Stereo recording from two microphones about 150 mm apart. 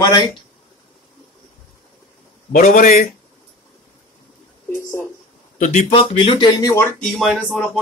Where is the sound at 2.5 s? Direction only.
70° left (ahead or behind).